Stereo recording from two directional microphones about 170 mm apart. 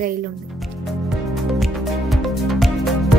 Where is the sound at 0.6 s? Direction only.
Centre (ahead or behind).